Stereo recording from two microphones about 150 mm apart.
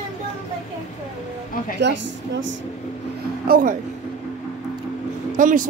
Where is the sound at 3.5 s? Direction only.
65° right (ahead or behind).